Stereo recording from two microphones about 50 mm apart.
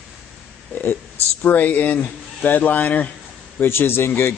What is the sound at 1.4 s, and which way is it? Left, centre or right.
Speech, left.